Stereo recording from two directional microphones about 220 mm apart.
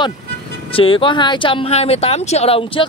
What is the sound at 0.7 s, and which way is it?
Speech, 25° left (ahead or behind).